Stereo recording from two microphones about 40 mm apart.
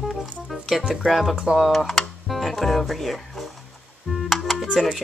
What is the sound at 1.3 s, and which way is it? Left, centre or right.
Speech, centre.